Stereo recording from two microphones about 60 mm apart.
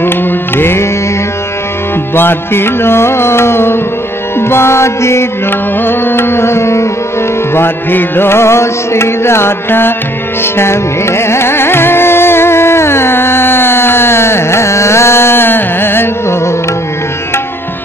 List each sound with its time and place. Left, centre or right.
0.0 s music: left
2.1 s music: left
5.5 s tabla: left
7.5 s music: left